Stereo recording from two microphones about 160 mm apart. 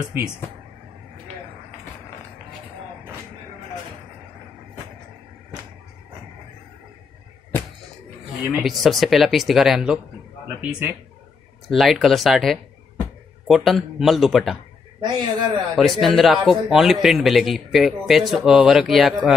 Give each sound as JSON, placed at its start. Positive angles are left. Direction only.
{"t": 8.5, "sound": "a man's voice", "side_deg": 0}
{"t": 15.0, "sound": "a man's voice", "side_deg": -25}
{"t": 15.7, "sound": "a man's voice", "side_deg": 0}